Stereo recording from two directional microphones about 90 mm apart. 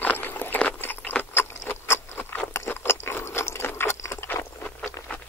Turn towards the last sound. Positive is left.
turn(degrees=15)  # may be behind; listen again after turning